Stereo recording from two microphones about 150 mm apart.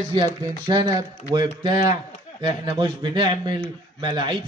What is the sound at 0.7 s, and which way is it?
A man's voice, 25° right (ahead or behind).